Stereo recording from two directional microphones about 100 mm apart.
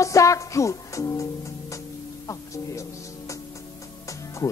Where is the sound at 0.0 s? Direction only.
35° left (ahead or behind).